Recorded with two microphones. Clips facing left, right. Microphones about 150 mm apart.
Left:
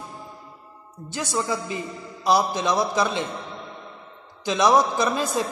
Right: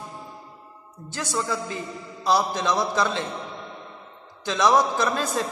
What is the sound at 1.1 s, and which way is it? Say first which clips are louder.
A man's voice: left 1 dB; 15° left (ahead or behind).